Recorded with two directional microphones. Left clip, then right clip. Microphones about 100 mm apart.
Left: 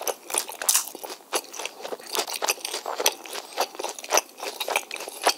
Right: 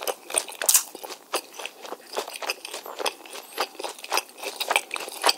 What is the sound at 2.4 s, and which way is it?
Keys jangling, 65° left (ahead or behind).